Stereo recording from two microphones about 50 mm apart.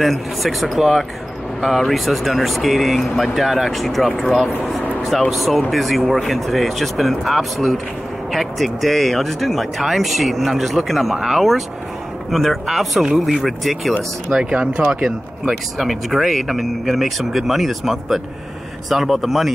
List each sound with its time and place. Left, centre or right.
0.0 s speech: centre
14.4 s speech: right
15.0 s speech: centre